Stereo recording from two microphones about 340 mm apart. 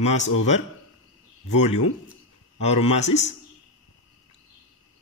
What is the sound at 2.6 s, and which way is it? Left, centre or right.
Speech, centre.